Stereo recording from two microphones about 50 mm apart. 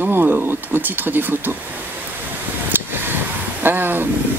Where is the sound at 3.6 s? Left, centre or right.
Right.